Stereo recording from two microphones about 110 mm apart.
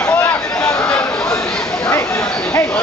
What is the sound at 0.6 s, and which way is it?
Chatter, 10° left (ahead or behind).